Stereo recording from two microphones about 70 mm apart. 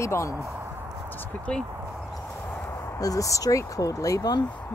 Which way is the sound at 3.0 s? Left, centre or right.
Left.